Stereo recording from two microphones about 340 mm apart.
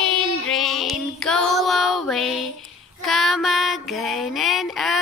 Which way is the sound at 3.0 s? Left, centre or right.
Centre.